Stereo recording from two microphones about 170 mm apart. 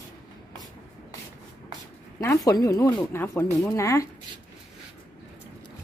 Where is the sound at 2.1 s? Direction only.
20° left (ahead or behind).